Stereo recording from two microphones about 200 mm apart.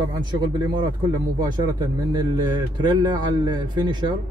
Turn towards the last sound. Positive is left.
turn(degrees=-20)  # may be behind; listen again after turning